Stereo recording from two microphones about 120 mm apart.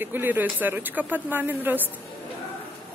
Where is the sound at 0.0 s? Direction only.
15° right (ahead or behind).